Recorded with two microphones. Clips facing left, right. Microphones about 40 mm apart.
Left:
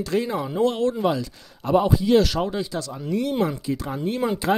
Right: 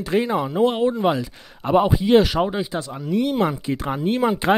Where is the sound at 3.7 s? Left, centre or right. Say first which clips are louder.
Right 3 dB; right.